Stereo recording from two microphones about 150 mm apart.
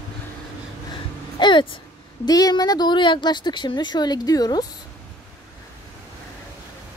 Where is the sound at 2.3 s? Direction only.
25° left (ahead or behind).